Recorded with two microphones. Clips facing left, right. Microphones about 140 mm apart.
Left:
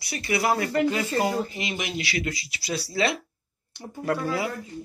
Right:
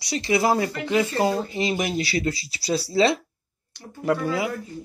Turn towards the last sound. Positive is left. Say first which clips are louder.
# right 3 dB
turn(degrees=-15)  # may be behind; listen again after turning